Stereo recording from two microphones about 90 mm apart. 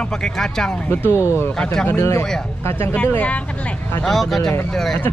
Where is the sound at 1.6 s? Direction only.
5° left (ahead or behind).